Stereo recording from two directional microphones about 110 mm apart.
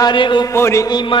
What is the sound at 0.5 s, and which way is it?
Speech, 25° left (ahead or behind).